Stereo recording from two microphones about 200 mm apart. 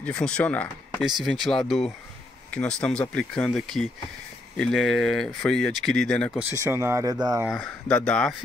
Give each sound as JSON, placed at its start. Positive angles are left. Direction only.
{"t": 0.0, "sound": "speech", "side_deg": 5}
{"t": 6.5, "sound": "speech", "side_deg": -15}
{"t": 7.4, "sound": "speech", "side_deg": 0}